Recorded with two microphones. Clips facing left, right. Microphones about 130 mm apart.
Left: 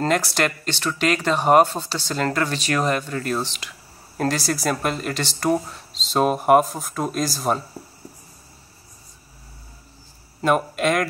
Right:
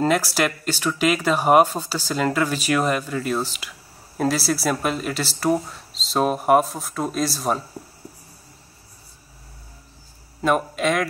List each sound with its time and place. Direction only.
0.0 s speech: 10° right (ahead or behind)
10.4 s speech: centre (ahead or behind)